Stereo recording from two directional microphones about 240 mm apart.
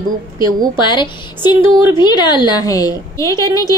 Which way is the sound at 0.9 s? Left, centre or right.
Centre.